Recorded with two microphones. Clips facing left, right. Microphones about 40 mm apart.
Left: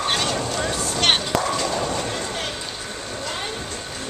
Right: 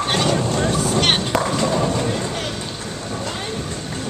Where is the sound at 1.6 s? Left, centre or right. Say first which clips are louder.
Right 4 dB; centre.